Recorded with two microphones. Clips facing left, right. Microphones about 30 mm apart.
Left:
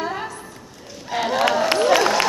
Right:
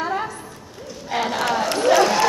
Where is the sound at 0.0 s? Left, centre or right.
Centre.